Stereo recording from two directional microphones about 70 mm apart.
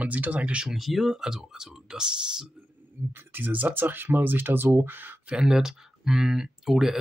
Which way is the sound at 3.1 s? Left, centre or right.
Right.